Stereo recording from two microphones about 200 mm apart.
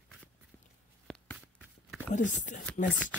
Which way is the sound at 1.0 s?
5° left (ahead or behind).